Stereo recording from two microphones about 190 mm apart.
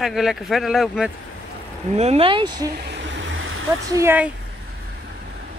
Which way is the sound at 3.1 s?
85° right.